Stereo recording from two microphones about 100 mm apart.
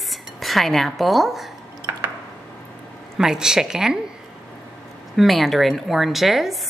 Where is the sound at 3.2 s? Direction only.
5° right (ahead or behind).